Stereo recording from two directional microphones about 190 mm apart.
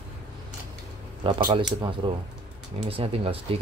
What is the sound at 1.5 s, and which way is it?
Speech, 25° right (ahead or behind).